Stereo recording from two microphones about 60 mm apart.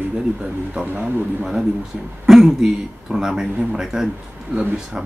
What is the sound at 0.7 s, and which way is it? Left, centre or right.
Speech, centre.